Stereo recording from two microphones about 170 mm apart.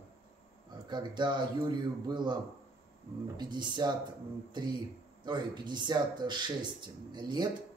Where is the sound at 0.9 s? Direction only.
25° right (ahead or behind).